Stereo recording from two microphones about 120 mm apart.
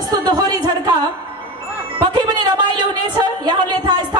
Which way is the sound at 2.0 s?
40° right (ahead or behind).